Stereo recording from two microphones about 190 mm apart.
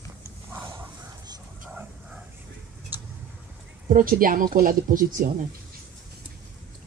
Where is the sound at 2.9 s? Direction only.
10° right (ahead or behind).